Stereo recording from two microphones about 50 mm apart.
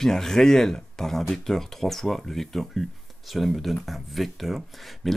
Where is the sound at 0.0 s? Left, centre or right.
Centre.